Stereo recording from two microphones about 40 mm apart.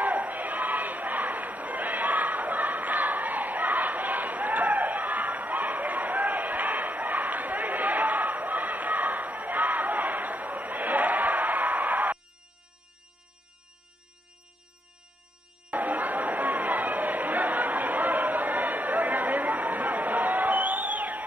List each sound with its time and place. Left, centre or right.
0.0 s battle cry: right
15.7 s chatter: right